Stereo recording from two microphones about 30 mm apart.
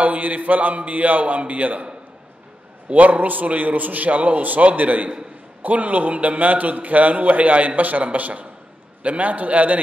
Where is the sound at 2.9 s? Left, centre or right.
Right.